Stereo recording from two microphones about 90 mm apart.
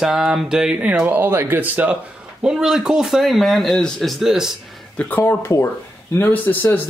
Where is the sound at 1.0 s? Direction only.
20° right (ahead or behind).